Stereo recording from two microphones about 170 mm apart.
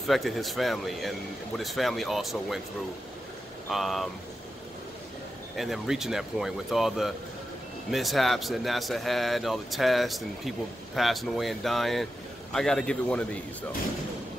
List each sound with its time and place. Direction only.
0.0 s a man's voice: centre (ahead or behind)
3.7 s a man's voice: centre (ahead or behind)
5.6 s a man's voice: centre (ahead or behind)